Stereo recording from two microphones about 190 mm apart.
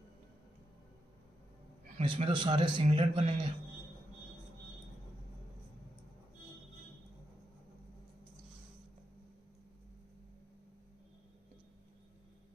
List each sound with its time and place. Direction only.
2.0 s a man's voice: 30° right (ahead or behind)